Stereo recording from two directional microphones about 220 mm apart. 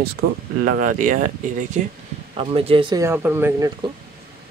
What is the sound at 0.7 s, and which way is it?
Speech, 40° right (ahead or behind).